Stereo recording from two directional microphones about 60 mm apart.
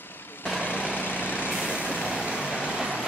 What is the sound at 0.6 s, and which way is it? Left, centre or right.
Vehicle, left.